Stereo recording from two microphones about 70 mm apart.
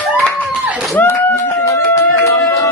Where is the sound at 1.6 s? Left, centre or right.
Left.